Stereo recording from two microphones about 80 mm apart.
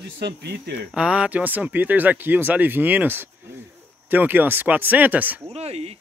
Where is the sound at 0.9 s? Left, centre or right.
Centre.